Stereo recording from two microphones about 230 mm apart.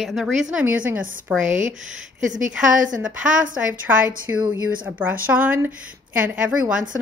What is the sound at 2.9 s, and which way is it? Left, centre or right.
A woman's voice, centre.